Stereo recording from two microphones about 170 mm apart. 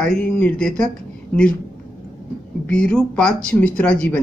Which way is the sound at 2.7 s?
5° left (ahead or behind).